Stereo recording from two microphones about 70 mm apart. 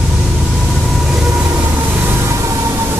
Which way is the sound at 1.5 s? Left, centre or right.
Right.